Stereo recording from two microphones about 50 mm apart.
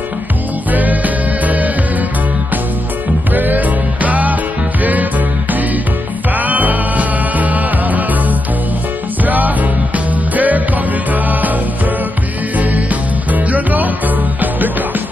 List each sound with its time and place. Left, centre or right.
0.7 s music: right
3.3 s music: right